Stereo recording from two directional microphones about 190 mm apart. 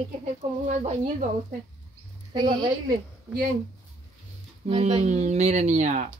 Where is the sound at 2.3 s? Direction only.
25° right (ahead or behind).